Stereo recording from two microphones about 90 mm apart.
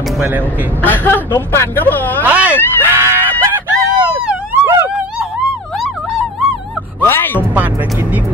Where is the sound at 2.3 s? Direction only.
15° right (ahead or behind).